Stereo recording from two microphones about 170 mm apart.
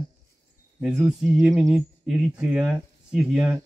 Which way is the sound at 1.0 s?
5° right (ahead or behind).